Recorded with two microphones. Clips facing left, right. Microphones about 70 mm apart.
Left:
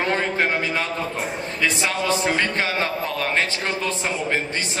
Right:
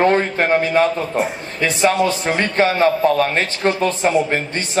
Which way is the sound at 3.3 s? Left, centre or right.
Right.